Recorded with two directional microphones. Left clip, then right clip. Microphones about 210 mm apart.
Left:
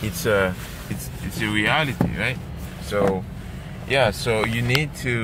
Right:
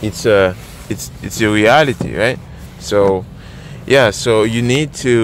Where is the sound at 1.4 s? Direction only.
55° right (ahead or behind).